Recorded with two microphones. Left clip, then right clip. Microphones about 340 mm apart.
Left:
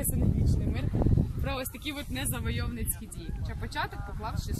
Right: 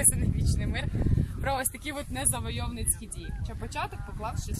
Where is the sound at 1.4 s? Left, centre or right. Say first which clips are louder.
Right 4 dB; right.